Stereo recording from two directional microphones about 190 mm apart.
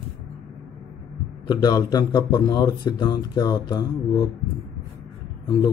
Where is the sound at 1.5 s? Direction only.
20° left (ahead or behind).